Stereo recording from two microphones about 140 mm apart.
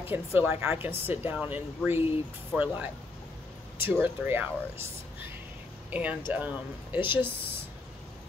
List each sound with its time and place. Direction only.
0.0 s speech: 15° right (ahead or behind)